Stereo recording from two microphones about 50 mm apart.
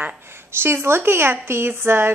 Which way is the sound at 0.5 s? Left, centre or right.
Right.